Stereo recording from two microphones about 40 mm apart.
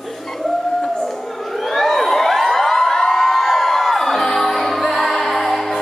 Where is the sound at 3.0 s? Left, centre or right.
Centre.